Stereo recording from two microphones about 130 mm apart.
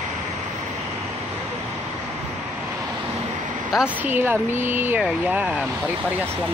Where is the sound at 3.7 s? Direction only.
5° right (ahead or behind).